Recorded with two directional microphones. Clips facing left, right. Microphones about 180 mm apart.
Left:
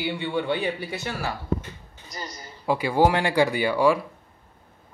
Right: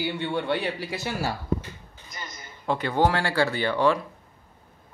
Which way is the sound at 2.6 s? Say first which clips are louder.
Left 3 dB; 10° left (ahead or behind).